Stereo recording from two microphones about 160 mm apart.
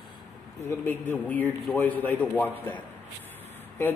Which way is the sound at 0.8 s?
10° left (ahead or behind).